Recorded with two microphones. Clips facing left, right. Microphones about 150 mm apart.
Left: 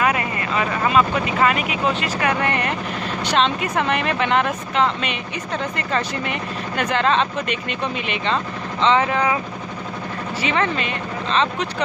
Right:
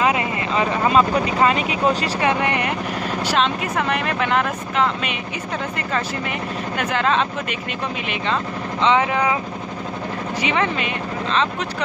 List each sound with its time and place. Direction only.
0.0 s speech: 20° right (ahead or behind)
2.1 s speech: 20° right (ahead or behind)
8.8 s speech: 10° right (ahead or behind)
10.4 s speech: 10° right (ahead or behind)